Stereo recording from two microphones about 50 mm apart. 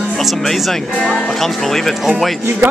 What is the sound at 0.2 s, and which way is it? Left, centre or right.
Speech, centre.